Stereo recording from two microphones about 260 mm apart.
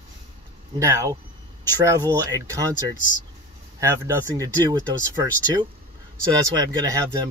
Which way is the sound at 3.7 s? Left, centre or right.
Centre.